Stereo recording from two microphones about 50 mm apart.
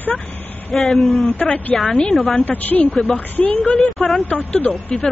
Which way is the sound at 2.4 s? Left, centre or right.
Left.